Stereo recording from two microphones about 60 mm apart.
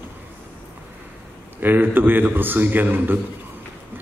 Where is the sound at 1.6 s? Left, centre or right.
Right.